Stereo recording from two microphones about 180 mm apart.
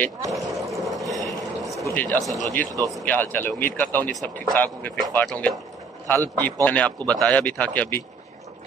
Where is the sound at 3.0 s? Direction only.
10° left (ahead or behind).